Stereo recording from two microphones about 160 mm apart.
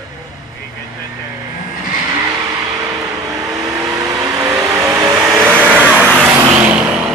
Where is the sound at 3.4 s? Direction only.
20° right (ahead or behind).